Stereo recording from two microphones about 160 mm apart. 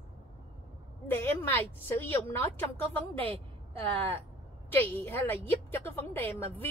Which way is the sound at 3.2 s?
35° right (ahead or behind).